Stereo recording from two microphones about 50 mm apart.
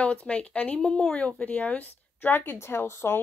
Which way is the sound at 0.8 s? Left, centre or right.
Centre.